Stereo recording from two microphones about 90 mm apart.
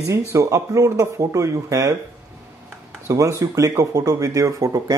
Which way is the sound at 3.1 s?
35° right (ahead or behind).